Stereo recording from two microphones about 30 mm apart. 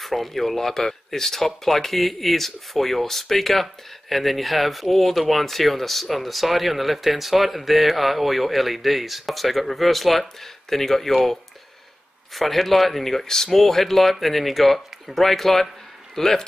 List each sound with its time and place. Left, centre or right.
0.0 s speech: centre
12.4 s speech: centre